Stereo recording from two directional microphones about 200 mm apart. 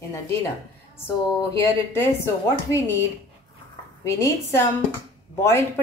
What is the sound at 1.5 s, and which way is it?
Speech, 15° left (ahead or behind).